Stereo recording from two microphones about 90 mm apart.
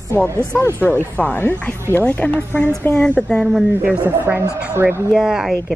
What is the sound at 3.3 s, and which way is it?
Speech, 5° right (ahead or behind).